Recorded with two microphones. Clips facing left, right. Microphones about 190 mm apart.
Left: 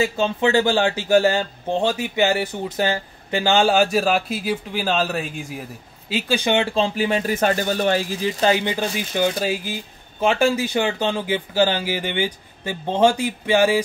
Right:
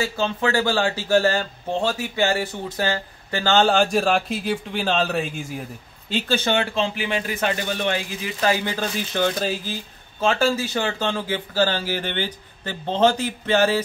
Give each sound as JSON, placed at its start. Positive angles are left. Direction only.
{"t": 0.0, "sound": "speech", "side_deg": 20}
{"t": 6.7, "sound": "speech", "side_deg": 35}